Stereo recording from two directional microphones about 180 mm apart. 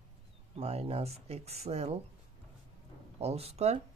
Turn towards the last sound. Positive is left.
turn(degrees=-35)  # may be behind; listen again after turning